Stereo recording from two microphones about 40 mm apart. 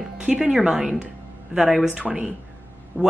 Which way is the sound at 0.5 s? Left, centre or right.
Centre.